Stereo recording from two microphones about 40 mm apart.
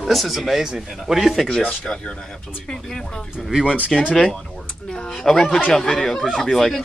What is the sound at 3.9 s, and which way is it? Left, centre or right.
Speech, centre.